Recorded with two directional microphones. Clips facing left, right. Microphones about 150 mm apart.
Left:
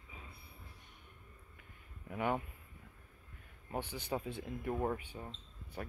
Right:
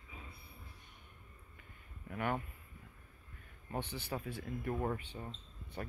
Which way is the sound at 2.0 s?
15° left (ahead or behind).